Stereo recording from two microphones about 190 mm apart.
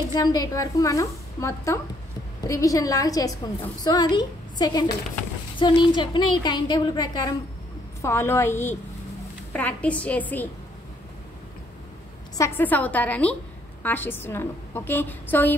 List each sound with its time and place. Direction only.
0.1 s a woman's voice: 20° left (ahead or behind)
12.4 s a woman's voice: 10° left (ahead or behind)